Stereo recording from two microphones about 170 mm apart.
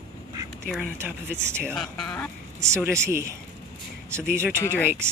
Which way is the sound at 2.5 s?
15° right (ahead or behind).